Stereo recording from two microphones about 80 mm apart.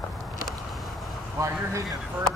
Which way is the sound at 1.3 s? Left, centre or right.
Right.